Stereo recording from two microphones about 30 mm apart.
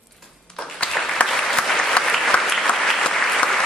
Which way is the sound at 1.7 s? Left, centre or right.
Centre.